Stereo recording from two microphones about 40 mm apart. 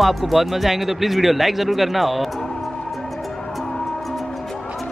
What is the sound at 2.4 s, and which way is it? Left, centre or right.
Music, centre.